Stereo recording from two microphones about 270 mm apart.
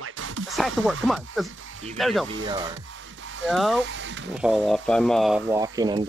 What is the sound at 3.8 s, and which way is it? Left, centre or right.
Speech, right.